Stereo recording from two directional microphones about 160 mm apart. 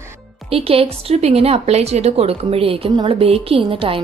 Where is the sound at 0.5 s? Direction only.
35° right (ahead or behind).